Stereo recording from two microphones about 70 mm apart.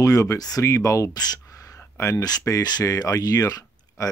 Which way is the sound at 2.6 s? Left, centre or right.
Left.